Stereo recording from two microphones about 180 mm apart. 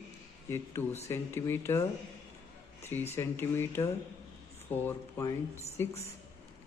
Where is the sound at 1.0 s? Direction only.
15° left (ahead or behind).